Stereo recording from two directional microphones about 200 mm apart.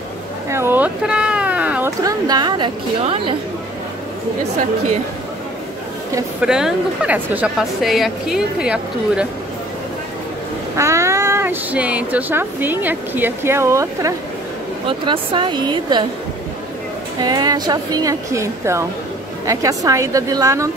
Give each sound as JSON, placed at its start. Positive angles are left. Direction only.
{"t": 0.5, "sound": "a sound", "side_deg": -10}
{"t": 2.0, "sound": "a woman's voice", "side_deg": -20}
{"t": 6.4, "sound": "a woman's voice", "side_deg": -5}
{"t": 10.8, "sound": "a woman's voice", "side_deg": -15}
{"t": 17.2, "sound": "a woman's voice", "side_deg": -20}